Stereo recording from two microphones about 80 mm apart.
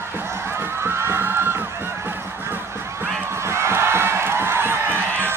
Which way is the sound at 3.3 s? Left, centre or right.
Right.